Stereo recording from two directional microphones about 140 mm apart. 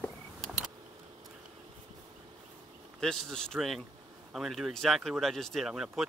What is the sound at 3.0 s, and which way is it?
Speech, 5° left (ahead or behind).